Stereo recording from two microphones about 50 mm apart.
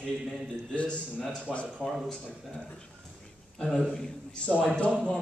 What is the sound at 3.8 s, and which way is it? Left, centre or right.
Speech, centre.